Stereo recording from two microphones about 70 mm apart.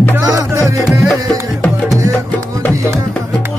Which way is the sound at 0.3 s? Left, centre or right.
Right.